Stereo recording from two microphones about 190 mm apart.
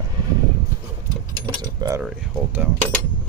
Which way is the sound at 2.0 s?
5° right (ahead or behind).